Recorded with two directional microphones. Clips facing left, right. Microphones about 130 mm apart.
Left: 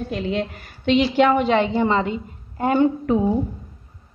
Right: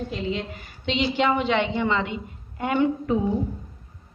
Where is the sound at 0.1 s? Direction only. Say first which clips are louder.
Left 4 dB; 50° left (ahead or behind).